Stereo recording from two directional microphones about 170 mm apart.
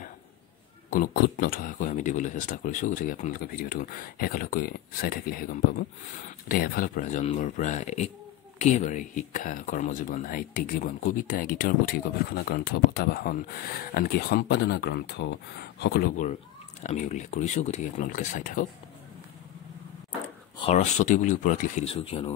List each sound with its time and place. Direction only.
0.8 s speech: 60° left (ahead or behind)
20.5 s speech: 40° left (ahead or behind)
21.9 s speech: 35° left (ahead or behind)